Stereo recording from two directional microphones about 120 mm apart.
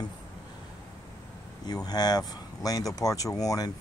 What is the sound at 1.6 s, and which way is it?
Speech, 35° left (ahead or behind).